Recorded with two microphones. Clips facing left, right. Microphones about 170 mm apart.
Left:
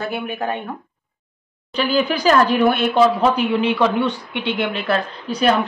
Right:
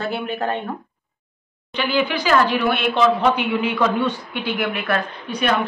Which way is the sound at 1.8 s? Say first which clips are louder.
Left 2 dB; 40° left (ahead or behind).